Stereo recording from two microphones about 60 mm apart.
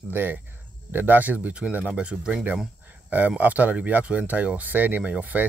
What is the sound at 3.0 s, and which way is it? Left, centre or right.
Speech, right.